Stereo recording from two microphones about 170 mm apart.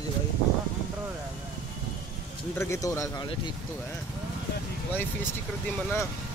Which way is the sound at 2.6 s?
15° left (ahead or behind).